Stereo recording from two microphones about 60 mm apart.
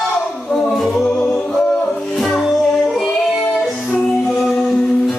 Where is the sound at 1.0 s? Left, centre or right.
Centre.